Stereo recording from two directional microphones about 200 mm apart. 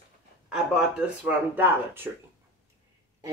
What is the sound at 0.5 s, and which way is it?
Speech, 5° right (ahead or behind).